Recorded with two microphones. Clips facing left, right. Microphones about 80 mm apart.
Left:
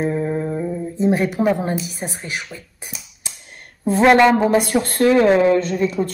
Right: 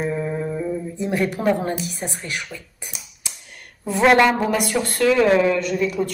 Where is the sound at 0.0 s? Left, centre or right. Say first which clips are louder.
Left 3 dB; left.